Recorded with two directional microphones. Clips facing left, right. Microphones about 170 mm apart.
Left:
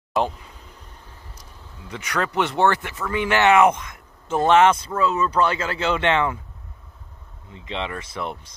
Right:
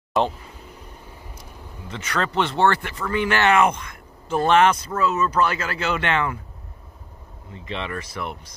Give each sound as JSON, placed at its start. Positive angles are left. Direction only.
{"t": 0.1, "sound": "speech", "side_deg": 0}
{"t": 2.0, "sound": "a man's voice", "side_deg": 15}
{"t": 7.5, "sound": "a man's voice", "side_deg": 20}